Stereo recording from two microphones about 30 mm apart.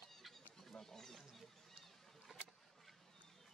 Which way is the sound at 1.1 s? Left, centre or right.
Centre.